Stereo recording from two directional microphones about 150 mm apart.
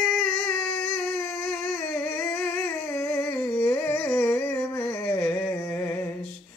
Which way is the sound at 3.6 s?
10° left (ahead or behind).